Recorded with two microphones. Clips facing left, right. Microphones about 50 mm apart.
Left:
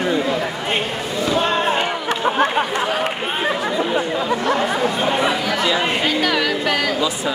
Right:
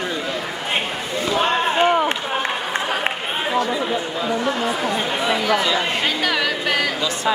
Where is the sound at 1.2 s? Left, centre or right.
Centre.